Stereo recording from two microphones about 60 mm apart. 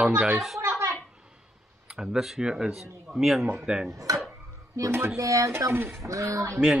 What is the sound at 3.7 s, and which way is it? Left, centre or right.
Speech, centre.